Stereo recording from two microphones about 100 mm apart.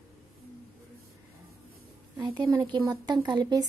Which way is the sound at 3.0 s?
45° right (ahead or behind).